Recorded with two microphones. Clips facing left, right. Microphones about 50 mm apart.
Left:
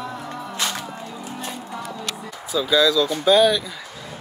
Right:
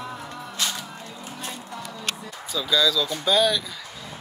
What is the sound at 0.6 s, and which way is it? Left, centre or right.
Music, left.